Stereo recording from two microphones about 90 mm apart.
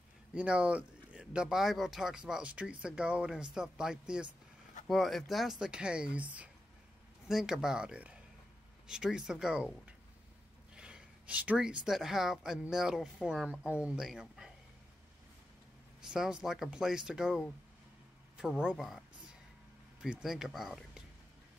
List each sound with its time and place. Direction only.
0.3 s speech: 10° right (ahead or behind)
14.0 s speech: centre (ahead or behind)
16.0 s speech: 5° right (ahead or behind)